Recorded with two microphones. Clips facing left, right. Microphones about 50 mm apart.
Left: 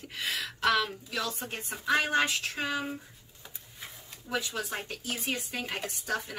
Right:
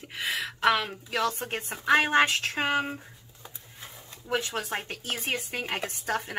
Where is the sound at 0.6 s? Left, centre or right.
Right.